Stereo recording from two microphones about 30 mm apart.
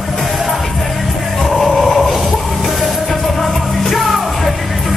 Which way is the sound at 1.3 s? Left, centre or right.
Centre.